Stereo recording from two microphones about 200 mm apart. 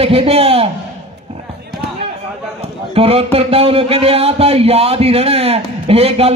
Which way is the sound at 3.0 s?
30° right (ahead or behind).